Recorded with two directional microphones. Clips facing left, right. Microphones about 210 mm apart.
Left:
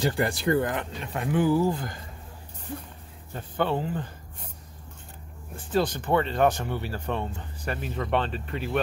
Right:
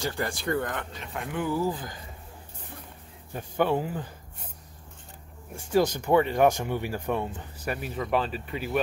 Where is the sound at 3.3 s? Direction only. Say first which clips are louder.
Right 2 dB; 10° right (ahead or behind).